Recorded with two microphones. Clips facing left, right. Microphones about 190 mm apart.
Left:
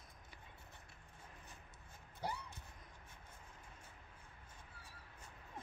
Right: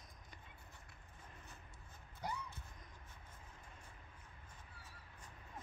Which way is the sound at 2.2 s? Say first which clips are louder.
Left 1 dB; 30° left (ahead or behind).